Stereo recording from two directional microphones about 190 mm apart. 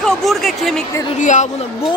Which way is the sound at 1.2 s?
40° left (ahead or behind).